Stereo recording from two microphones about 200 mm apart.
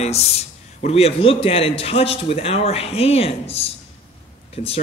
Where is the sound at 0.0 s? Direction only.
35° left (ahead or behind).